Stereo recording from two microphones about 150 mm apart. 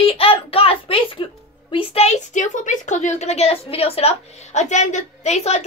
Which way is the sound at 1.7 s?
40° left (ahead or behind).